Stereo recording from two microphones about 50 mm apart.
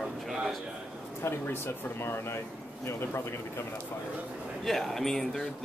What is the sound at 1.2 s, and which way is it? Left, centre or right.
Speech, left.